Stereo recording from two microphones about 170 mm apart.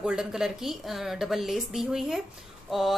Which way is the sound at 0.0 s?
5° right (ahead or behind).